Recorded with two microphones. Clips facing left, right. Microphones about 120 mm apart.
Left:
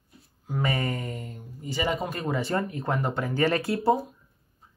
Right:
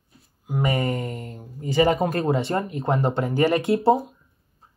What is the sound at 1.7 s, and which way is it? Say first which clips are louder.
Speech: right 9 dB; 50° right (ahead or behind).